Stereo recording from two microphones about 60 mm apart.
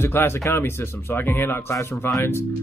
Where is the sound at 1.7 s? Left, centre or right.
Left.